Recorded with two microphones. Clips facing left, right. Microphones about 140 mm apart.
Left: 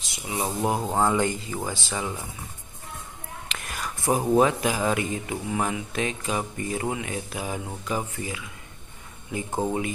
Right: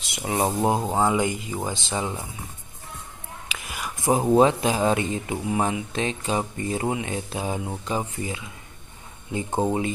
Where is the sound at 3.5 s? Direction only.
5° right (ahead or behind).